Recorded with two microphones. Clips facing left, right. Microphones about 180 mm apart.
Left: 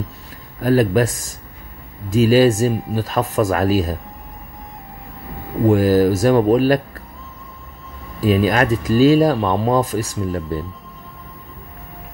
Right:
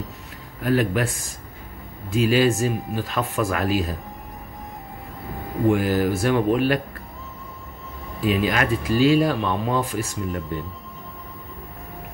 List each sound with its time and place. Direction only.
0.6 s speech: 40° left (ahead or behind)
2.1 s speech: 40° left (ahead or behind)
5.7 s speech: 40° left (ahead or behind)
8.2 s speech: 40° left (ahead or behind)